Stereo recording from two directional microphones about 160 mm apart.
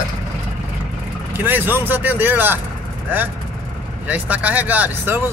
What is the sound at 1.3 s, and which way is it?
Speech, 10° right (ahead or behind).